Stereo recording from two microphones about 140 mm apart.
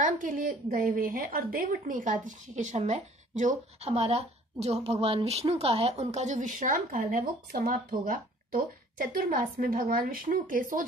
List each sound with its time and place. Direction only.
0.0 s a woman's voice: 70° right (ahead or behind)